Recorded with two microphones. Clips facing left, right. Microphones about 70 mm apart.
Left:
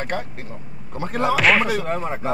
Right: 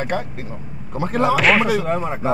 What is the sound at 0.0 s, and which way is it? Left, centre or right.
Speech, centre.